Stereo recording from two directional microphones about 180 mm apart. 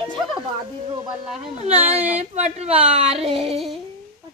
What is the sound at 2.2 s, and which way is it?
A woman's voice, 35° right (ahead or behind).